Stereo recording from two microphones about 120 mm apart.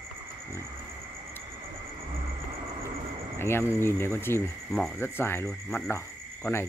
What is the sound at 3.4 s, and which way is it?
Speech, 20° left (ahead or behind).